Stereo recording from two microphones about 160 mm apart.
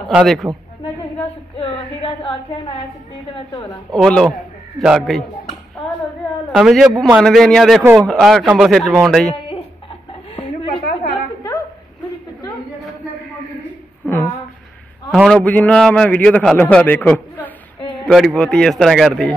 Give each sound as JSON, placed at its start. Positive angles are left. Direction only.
{"t": 0.1, "sound": "speech", "side_deg": -5}
{"t": 1.6, "sound": "a sound", "side_deg": 35}
{"t": 3.9, "sound": "speech", "side_deg": 5}
{"t": 6.5, "sound": "speech", "side_deg": -5}
{"t": 10.3, "sound": "chicken", "side_deg": 35}
{"t": 14.0, "sound": "a sound", "side_deg": 10}
{"t": 15.0, "sound": "a man's voice", "side_deg": 0}